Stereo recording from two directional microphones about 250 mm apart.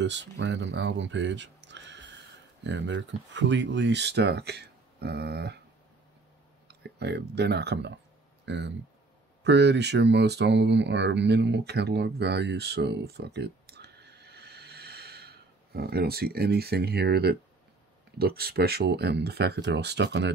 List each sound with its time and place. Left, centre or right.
0.0 s speech: right
6.7 s speech: right